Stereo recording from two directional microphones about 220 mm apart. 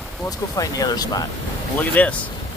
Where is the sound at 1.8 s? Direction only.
5° left (ahead or behind).